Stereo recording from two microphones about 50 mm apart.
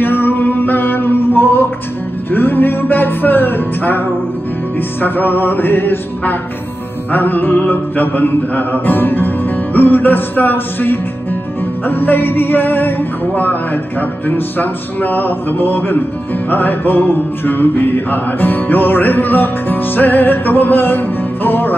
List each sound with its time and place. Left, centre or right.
0.0 s music: left
5.0 s music: left
11.9 s male singing: left
13.3 s music: left